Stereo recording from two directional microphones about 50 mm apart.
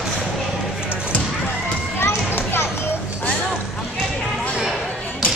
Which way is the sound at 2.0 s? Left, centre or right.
Left.